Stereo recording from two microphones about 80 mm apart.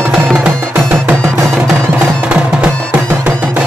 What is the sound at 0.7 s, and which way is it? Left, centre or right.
Music, right.